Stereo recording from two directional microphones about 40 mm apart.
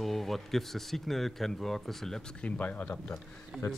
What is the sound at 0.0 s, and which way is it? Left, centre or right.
Speech, centre.